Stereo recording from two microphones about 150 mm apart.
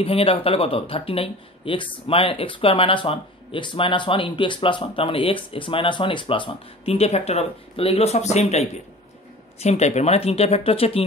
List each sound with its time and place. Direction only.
0.0 s speech: 40° left (ahead or behind)